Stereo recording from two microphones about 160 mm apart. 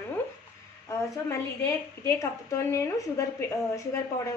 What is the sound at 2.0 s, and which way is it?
A woman's voice, 20° left (ahead or behind).